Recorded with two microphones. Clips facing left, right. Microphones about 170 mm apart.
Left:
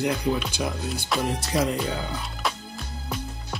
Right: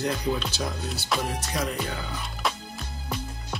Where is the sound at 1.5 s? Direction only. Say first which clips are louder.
Left 7 dB; 30° left (ahead or behind).